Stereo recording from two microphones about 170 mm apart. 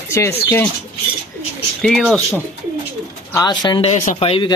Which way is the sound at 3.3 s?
25° left (ahead or behind).